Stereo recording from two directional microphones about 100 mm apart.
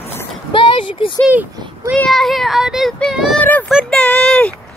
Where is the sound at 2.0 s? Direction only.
5° left (ahead or behind).